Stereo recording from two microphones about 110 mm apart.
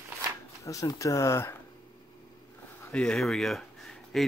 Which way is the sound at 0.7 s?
30° left (ahead or behind).